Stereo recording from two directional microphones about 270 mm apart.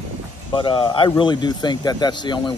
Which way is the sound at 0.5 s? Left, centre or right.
Centre.